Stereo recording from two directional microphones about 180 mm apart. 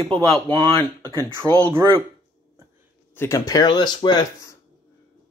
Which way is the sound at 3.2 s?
15° left (ahead or behind).